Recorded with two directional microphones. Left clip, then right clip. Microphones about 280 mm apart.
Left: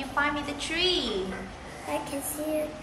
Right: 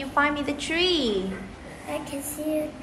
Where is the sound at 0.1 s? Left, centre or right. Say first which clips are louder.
Right 5 dB; right.